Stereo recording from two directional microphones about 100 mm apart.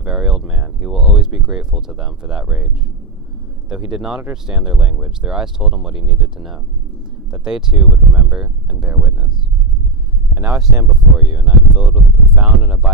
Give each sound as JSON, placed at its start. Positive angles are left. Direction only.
{"t": 0.0, "sound": "a sound", "side_deg": -5}
{"t": 3.6, "sound": "speech", "side_deg": -5}
{"t": 10.3, "sound": "speech", "side_deg": -5}